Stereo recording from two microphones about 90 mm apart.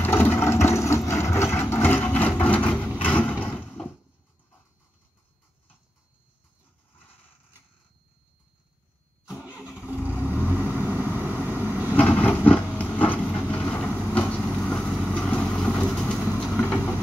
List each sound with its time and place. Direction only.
0.0 s vehicle: 25° left (ahead or behind)
3.1 s a sound: 20° left (ahead or behind)
9.3 s vehicle: 5° right (ahead or behind)
10.1 s vehicle: 25° left (ahead or behind)
10.4 s vehicle: 20° right (ahead or behind)
12.0 s vehicle: 15° left (ahead or behind)